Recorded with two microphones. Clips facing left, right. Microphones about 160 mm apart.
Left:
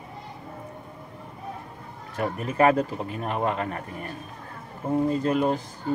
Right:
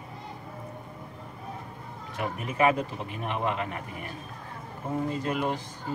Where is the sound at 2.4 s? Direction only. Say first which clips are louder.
Left 4 dB; 40° left (ahead or behind).